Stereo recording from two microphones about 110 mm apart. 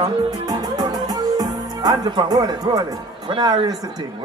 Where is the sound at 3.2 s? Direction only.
45° right (ahead or behind).